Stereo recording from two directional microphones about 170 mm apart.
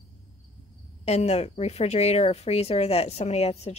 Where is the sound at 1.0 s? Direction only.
40° left (ahead or behind).